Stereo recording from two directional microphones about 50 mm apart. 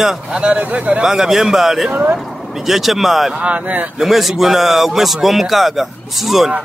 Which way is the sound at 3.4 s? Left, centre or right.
Right.